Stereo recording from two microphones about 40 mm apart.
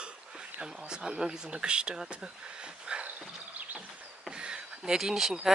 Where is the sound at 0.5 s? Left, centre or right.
Centre.